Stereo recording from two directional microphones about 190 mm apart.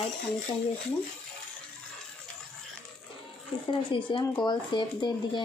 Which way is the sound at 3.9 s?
25° left (ahead or behind).